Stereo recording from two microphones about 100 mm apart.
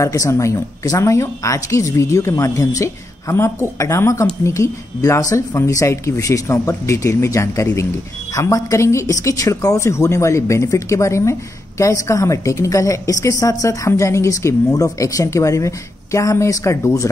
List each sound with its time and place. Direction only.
0.0 s a woman's voice: 30° left (ahead or behind)